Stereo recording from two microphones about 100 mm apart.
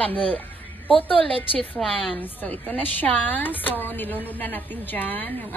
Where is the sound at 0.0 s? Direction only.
15° left (ahead or behind).